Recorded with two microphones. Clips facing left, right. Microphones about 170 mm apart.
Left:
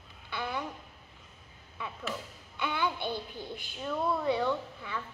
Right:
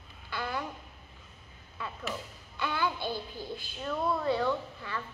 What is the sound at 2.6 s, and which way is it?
Speech, 15° left (ahead or behind).